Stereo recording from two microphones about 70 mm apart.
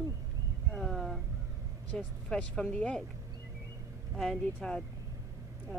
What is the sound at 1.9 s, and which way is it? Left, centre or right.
A woman's voice, centre.